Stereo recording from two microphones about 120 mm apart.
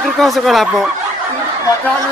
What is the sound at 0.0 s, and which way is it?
Speech, centre (ahead or behind).